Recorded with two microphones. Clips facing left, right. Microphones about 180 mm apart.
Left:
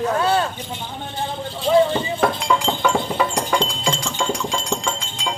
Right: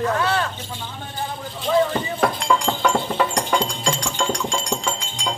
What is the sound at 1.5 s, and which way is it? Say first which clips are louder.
Speech: left 3 dB; 30° left (ahead or behind).